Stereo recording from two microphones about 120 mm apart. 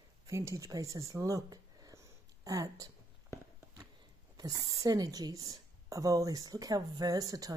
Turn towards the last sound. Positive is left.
turn(degrees=-30)  # may be behind; listen again after turning